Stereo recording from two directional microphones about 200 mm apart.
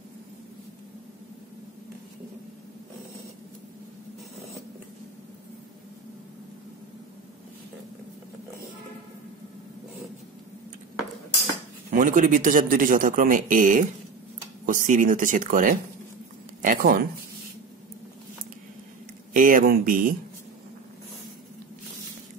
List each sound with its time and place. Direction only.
11.9 s speech: 45° right (ahead or behind)
19.3 s speech: 45° right (ahead or behind)